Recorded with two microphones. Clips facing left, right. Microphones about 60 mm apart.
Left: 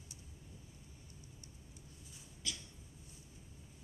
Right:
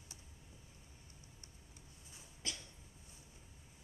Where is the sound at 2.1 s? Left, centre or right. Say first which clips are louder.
Left 1 dB; right.